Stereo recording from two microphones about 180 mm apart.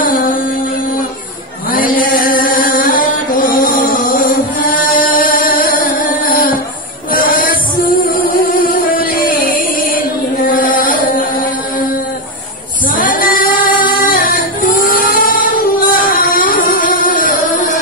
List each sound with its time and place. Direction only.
0.0 s music: 50° left (ahead or behind)
1.7 s music: 50° left (ahead or behind)
9.8 s chant: 50° left (ahead or behind)
12.9 s female singing: 50° left (ahead or behind)